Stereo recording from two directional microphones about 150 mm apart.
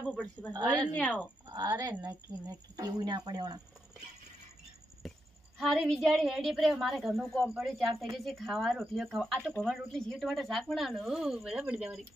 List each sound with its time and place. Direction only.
0.0 s speech: 5° left (ahead or behind)
1.7 s speech: 25° right (ahead or behind)
5.0 s a sound: centre (ahead or behind)
5.6 s speech: centre (ahead or behind)